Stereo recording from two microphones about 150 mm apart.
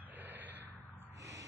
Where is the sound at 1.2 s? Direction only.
20° right (ahead or behind).